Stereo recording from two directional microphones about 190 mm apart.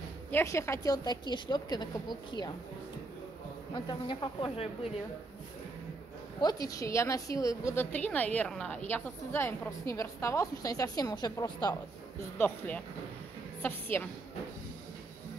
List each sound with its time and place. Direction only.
0.3 s a woman's voice: 15° left (ahead or behind)
3.7 s a woman's voice: 25° left (ahead or behind)
6.4 s a woman's voice: 20° left (ahead or behind)
12.4 s a woman's voice: 10° left (ahead or behind)